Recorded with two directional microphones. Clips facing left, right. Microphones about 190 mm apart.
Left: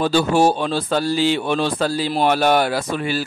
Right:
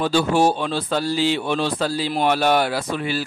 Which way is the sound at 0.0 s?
40° left (ahead or behind).